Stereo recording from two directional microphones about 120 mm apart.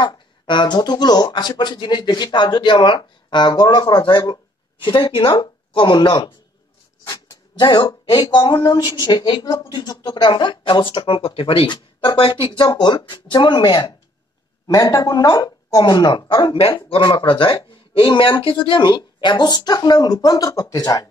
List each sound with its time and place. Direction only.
0.0 s speech: 40° left (ahead or behind)
14.7 s speech: 30° left (ahead or behind)